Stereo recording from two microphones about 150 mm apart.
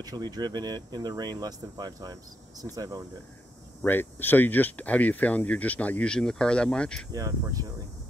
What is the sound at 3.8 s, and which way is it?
Speech, 15° left (ahead or behind).